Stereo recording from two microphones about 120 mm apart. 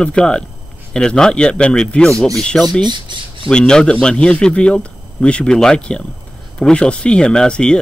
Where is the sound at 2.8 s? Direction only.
40° right (ahead or behind).